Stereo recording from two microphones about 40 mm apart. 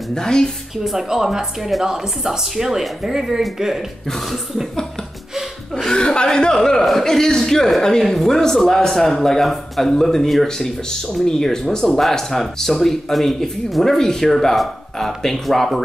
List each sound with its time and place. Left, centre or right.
0.1 s a man's voice: centre
0.8 s speech: centre
5.9 s a man's voice: left
6.8 s a man's voice: centre